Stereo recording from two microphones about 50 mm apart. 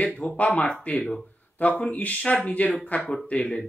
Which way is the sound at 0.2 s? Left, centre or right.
Left.